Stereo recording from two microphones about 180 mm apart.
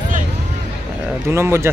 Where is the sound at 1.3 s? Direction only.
15° right (ahead or behind).